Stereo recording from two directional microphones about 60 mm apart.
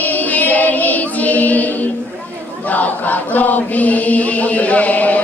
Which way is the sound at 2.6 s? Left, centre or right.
Left.